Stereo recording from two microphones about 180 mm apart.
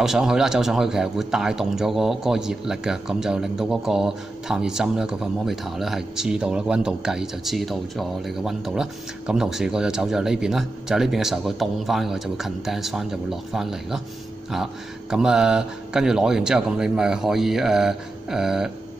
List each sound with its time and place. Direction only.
0.0 s a man's voice: 5° right (ahead or behind)